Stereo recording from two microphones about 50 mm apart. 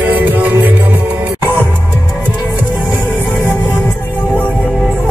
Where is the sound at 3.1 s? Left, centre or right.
Left.